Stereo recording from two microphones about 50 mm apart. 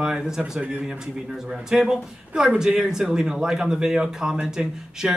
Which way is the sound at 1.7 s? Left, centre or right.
Centre.